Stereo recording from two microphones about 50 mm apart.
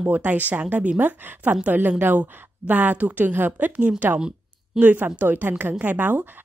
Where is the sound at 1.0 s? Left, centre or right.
Right.